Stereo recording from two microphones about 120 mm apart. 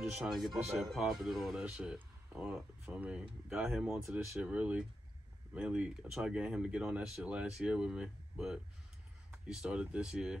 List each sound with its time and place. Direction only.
0.1 s speech: 5° right (ahead or behind)
3.9 s speech: 20° right (ahead or behind)